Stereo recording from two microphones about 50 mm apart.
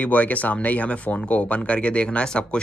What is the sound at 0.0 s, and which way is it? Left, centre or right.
Speech, left.